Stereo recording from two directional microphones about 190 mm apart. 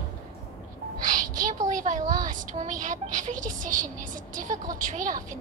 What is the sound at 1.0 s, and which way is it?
A woman's voice, 45° right (ahead or behind).